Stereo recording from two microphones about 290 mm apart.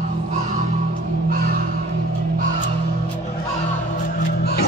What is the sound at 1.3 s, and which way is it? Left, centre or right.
Crow, right.